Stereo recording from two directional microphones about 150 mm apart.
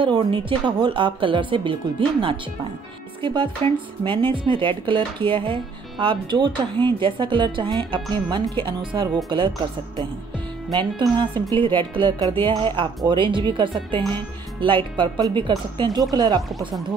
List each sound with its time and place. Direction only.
0.0 s speech: 30° right (ahead or behind)
11.0 s speech: 30° right (ahead or behind)
16.4 s speech: centre (ahead or behind)